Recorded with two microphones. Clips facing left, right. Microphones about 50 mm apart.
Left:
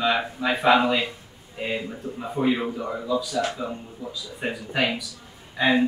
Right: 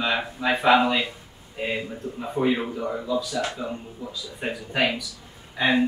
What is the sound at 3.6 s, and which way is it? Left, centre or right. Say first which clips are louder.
Speech: even; centre.